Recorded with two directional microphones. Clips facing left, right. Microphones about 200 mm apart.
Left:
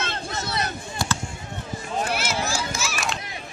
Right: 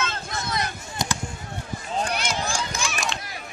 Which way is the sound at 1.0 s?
20° right (ahead or behind).